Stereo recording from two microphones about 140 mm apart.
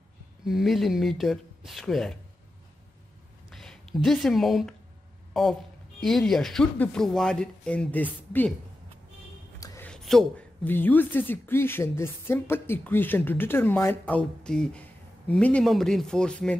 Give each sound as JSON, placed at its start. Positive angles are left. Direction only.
{"t": 0.5, "sound": "speech", "side_deg": 0}
{"t": 3.4, "sound": "speech", "side_deg": 0}
{"t": 9.6, "sound": "a sound", "side_deg": 25}
{"t": 9.8, "sound": "a woman's voice", "side_deg": 5}